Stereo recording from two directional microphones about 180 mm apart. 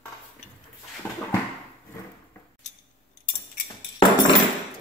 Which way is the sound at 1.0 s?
5° left (ahead or behind).